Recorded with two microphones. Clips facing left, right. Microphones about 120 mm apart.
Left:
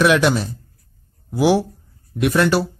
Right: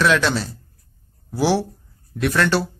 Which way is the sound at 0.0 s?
15° left (ahead or behind).